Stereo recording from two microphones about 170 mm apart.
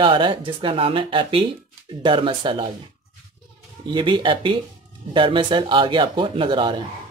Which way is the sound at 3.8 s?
25° right (ahead or behind).